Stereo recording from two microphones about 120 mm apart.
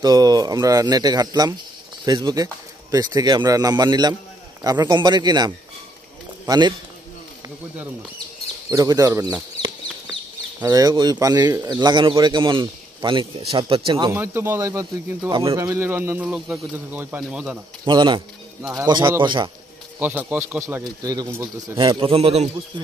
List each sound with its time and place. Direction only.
0.0 s a man's voice: 35° right (ahead or behind)
8.6 s chicken: 30° right (ahead or behind)
10.6 s a man's voice: 30° right (ahead or behind)
14.1 s a man's voice: 20° right (ahead or behind)
16.3 s speech: 5° right (ahead or behind)
16.7 s speech: 15° right (ahead or behind)
17.8 s speech: 40° right (ahead or behind)
19.2 s speech: 40° right (ahead or behind)
20.0 s a man's voice: 15° right (ahead or behind); by 21.3 s 30° right (ahead or behind)
21.7 s a man's voice: 45° right (ahead or behind); by 22.5 s 60° right (ahead or behind)